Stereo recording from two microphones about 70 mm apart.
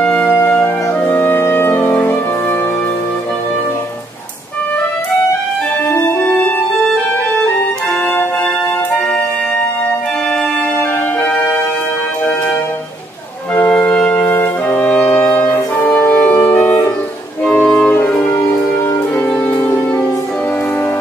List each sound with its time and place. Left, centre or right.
0.0 s music: centre
9.1 s music: left
11.2 s music: left
13.9 s brass instrument: left
17.8 s music: left